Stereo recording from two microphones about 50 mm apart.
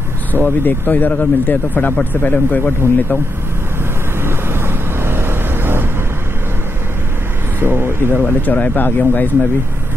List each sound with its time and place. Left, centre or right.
0.3 s speech: left
4.2 s vehicle: right
7.6 s speech: right
8.2 s speech: left